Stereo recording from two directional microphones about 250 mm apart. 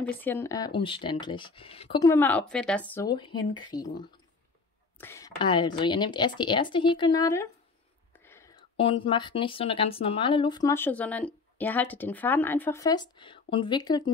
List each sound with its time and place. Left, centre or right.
0.2 s speech: centre
8.3 s a sound: centre
8.7 s speech: left